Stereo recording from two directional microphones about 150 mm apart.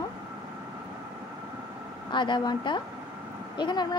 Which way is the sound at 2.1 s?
30° left (ahead or behind).